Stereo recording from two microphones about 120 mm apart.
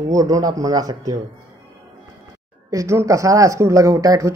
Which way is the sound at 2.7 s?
25° right (ahead or behind).